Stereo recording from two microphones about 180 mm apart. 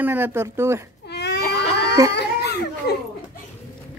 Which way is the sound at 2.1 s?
65° left (ahead or behind).